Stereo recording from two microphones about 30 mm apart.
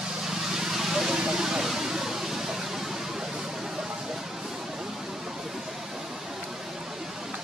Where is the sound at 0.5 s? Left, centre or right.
Centre.